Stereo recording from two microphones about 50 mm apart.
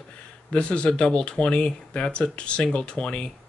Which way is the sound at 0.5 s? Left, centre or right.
Left.